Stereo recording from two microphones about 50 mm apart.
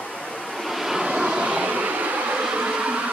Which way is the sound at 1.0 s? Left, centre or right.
Centre.